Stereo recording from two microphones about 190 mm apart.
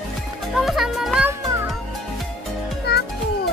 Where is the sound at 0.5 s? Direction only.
Centre (ahead or behind).